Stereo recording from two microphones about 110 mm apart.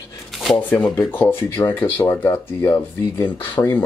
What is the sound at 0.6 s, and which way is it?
Speech, 10° left (ahead or behind).